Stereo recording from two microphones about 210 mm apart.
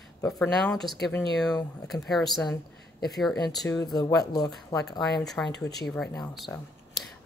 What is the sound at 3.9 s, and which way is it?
Speech, 15° left (ahead or behind).